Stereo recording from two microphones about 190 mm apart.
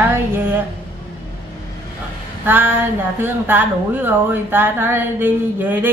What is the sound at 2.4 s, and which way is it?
Speech, 10° right (ahead or behind).